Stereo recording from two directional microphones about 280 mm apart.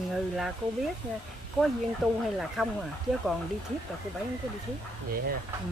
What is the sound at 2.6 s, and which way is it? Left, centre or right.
Speech, centre.